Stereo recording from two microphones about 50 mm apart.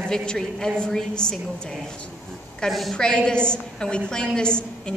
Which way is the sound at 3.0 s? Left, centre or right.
Centre.